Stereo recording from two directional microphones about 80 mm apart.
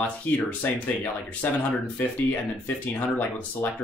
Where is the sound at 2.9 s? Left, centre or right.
Left.